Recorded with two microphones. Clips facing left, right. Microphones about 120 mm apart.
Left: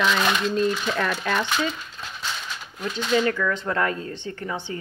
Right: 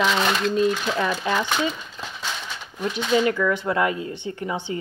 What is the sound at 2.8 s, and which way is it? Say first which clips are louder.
A woman's voice: right 2 dB; 20° right (ahead or behind).